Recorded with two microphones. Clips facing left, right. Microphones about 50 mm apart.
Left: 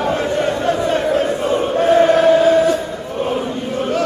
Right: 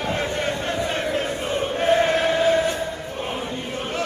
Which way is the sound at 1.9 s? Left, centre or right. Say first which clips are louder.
Left 8 dB; left.